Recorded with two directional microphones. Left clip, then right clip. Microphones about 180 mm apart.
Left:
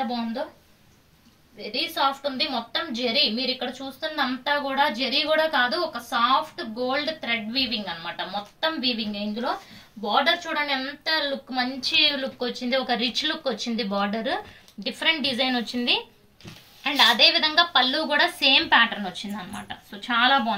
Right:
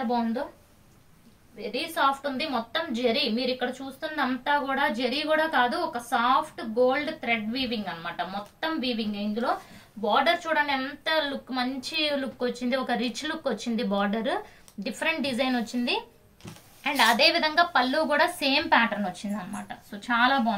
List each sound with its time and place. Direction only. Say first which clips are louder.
1.6 s a woman's voice: left 1 dB; 5° right (ahead or behind); by 20.5 s 20° right (ahead or behind)